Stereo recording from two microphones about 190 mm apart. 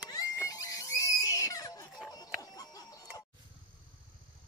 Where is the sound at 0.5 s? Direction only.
20° left (ahead or behind).